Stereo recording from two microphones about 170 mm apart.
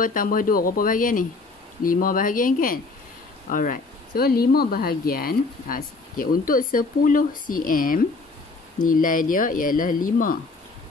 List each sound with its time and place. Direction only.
0.0 s speech: 55° left (ahead or behind)